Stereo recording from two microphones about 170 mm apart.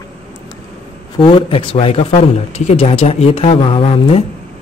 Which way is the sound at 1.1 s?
30° left (ahead or behind).